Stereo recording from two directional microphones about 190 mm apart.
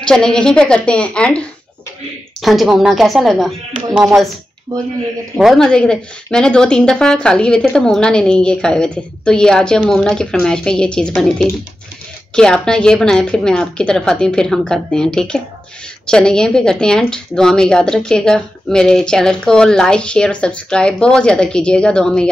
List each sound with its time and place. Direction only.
0.0 s a woman's voice: 5° left (ahead or behind)
2.4 s a woman's voice: centre (ahead or behind)
4.7 s speech: 20° right (ahead or behind)
5.4 s a woman's voice: centre (ahead or behind)